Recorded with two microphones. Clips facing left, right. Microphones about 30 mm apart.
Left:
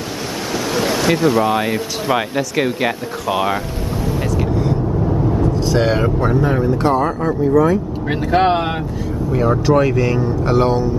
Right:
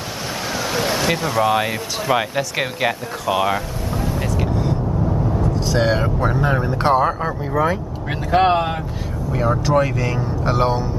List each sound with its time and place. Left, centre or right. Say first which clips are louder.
0.7 s speech: left 4 dB; centre
3.3 s speech: left 1 dB; centre
4.3 s vehicle: left 3 dB; centre
6.6 s speech: left 2 dB; right
7.0 s speech: left 2 dB; centre
7.5 s speech: left 5 dB; right
8.1 s speech: left 1 dB; centre